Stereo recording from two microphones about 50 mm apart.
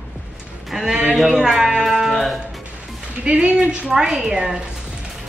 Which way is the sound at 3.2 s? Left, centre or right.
Right.